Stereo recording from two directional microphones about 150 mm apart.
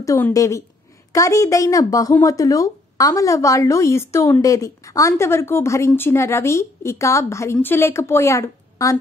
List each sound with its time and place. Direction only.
0.0 s speech: 20° left (ahead or behind)